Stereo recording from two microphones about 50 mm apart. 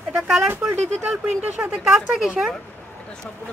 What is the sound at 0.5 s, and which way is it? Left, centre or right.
Speech, right.